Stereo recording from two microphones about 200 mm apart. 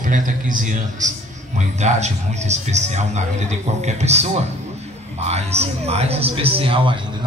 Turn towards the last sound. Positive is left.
turn(degrees=-25)  # may be behind; listen again after turning